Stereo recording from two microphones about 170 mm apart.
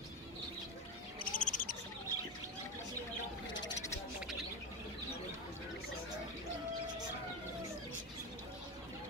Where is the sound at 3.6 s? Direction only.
20° left (ahead or behind).